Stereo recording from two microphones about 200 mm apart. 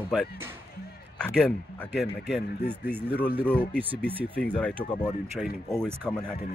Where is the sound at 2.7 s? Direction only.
10° right (ahead or behind).